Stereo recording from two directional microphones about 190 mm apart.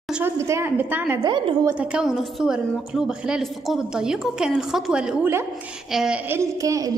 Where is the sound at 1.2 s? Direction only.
25° right (ahead or behind).